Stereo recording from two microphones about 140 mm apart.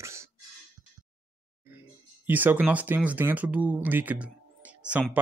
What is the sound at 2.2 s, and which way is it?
Speech, 15° right (ahead or behind).